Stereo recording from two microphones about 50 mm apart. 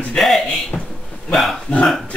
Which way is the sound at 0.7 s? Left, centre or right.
Left.